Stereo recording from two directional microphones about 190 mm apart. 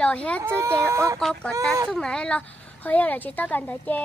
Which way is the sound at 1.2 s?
5° left (ahead or behind).